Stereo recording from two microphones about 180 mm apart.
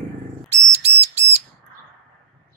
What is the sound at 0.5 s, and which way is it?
Whistle, 35° right (ahead or behind).